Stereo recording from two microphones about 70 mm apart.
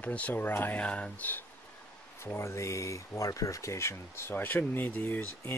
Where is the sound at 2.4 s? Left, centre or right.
Left.